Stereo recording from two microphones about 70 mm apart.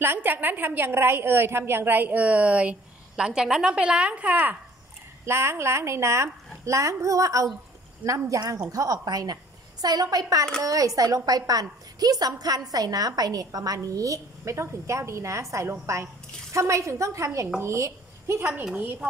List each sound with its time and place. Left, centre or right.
0.0 s a woman's voice: right
5.2 s a woman's voice: right
10.6 s a woman's voice: right
13.7 s a woman's voice: right
18.5 s a woman's voice: centre